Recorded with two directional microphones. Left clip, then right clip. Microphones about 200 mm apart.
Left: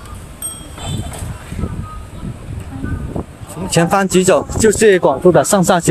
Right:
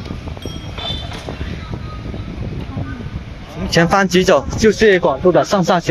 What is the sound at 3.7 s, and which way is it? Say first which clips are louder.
Speech: even; 5° left (ahead or behind).